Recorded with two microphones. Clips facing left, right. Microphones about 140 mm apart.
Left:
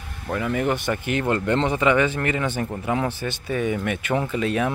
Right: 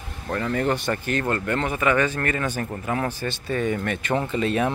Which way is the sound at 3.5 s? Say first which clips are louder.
Left 1 dB; 5° left (ahead or behind).